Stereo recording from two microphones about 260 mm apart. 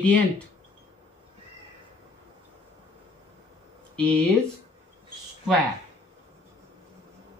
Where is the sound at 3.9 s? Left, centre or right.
Centre.